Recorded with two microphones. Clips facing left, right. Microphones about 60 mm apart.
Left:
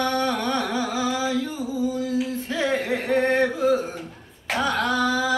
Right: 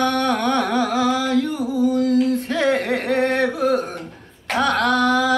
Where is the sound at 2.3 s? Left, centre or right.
Right.